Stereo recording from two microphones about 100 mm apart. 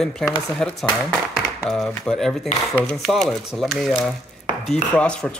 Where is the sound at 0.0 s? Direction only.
5° left (ahead or behind).